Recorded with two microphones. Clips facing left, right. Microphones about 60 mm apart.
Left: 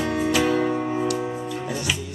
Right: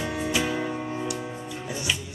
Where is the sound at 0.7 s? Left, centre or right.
Centre.